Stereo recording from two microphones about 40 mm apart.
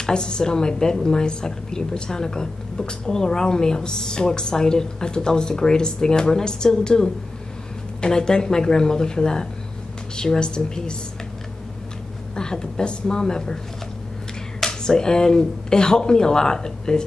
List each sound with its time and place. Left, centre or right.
0.0 s a woman's voice: centre
12.4 s a woman's voice: centre
14.6 s a woman's voice: centre